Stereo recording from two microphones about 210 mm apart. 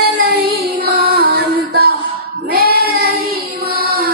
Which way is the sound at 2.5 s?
45° right (ahead or behind).